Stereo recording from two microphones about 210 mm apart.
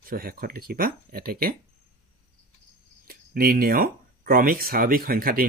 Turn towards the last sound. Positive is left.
turn(degrees=-45)  # may be behind; listen again after turning